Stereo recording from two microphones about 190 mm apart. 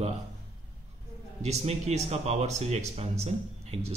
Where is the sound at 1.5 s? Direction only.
35° right (ahead or behind).